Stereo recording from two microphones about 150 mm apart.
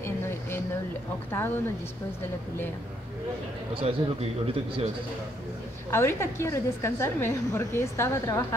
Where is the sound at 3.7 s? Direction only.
40° right (ahead or behind).